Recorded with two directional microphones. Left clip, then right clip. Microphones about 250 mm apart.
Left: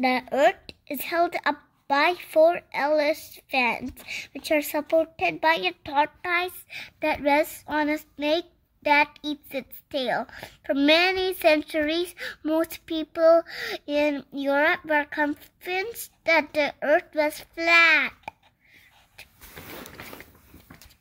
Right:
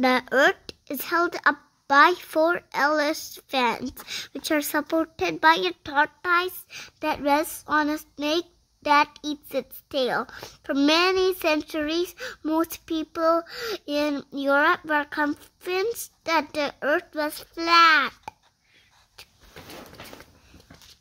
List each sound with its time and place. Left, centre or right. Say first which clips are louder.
0.0 s speech: right 1 dB; right